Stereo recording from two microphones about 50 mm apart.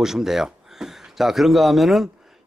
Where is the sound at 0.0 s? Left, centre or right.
Centre.